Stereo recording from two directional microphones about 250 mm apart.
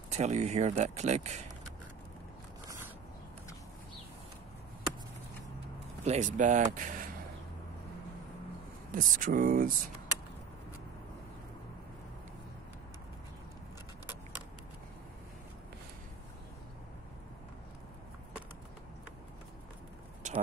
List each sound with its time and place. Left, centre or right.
0.1 s speech: right
6.0 s speech: right
8.9 s speech: right